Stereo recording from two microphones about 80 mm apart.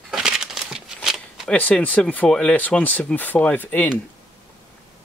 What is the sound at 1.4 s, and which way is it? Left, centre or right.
Speech, centre.